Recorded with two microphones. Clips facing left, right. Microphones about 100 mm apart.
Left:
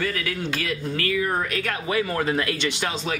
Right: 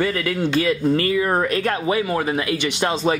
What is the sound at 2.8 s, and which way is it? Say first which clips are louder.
Speech: right 7 dB; 35° right (ahead or behind).